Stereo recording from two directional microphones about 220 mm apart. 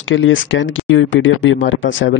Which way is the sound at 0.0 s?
60° left (ahead or behind).